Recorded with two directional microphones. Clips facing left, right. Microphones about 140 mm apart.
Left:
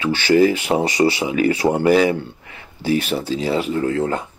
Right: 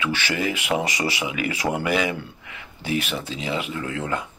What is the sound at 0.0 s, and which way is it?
Speech, 30° left (ahead or behind).